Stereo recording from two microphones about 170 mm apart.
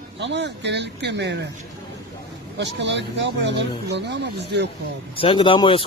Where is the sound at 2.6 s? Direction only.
90° right.